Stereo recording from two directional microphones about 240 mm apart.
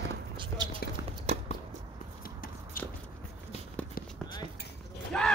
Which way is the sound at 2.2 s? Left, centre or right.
Left.